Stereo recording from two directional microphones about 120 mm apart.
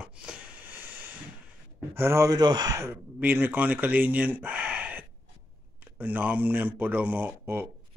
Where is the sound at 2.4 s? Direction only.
35° right (ahead or behind).